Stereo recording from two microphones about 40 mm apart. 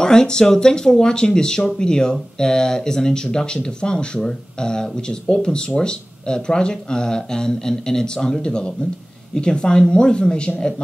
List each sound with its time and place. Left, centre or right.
0.0 s speech: centre